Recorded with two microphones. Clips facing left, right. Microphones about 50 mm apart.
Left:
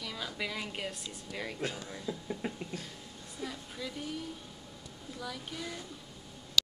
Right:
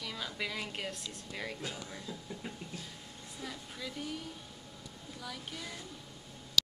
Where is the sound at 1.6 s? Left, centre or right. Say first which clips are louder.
Left 5 dB; left.